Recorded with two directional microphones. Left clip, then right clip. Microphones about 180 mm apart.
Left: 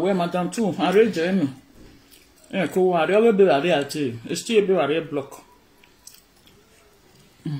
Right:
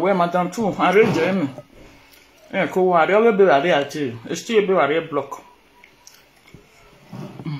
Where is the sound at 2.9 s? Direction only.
30° left (ahead or behind).